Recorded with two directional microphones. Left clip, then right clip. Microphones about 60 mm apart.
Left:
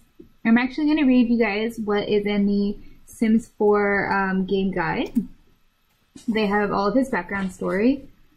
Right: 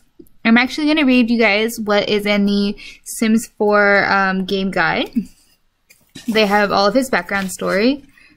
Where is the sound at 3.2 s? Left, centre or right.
Right.